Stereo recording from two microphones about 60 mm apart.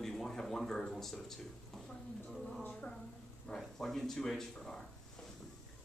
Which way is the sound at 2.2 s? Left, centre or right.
Centre.